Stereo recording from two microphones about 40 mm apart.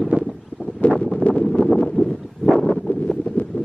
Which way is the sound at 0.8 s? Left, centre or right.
Left.